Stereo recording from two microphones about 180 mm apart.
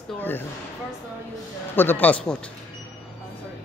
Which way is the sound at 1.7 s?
10° left (ahead or behind).